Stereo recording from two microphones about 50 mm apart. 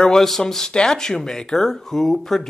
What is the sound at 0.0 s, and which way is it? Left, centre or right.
Speech, centre.